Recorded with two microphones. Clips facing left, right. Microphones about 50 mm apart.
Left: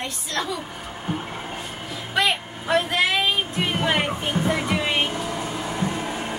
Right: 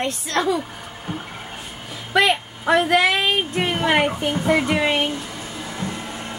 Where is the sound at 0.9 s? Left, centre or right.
Left.